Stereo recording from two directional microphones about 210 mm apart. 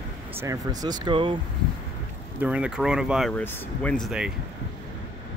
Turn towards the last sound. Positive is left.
turn(degrees=0)  # may be behind; listen again after turning